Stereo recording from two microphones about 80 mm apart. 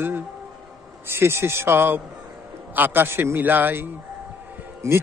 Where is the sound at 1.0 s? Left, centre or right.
Right.